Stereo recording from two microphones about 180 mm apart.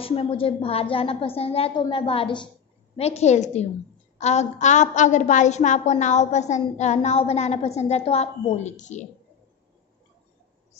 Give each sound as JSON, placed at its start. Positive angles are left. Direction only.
{"t": 0.0, "sound": "a woman's voice", "side_deg": 30}